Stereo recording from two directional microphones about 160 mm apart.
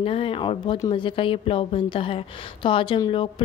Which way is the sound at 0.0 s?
35° left (ahead or behind).